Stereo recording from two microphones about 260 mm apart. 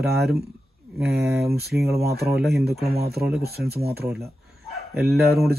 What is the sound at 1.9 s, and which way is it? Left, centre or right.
Speech, right.